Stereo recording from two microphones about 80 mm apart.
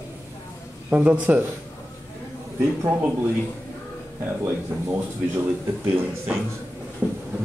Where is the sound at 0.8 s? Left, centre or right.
Centre.